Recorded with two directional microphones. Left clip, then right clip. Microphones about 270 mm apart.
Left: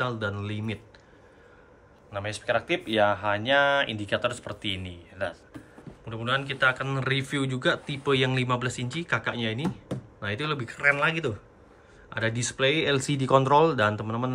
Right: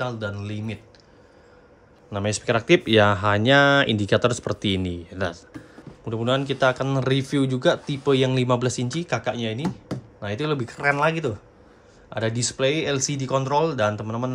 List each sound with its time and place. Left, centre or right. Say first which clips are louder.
0.0 s speech: right 1 dB; centre
2.1 s speech: right 4 dB; right; by 14.3 s centre